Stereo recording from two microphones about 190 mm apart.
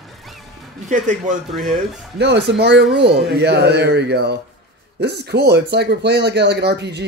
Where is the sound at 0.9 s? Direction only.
40° right (ahead or behind).